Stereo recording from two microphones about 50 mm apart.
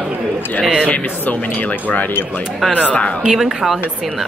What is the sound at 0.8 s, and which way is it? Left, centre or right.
Speech, left.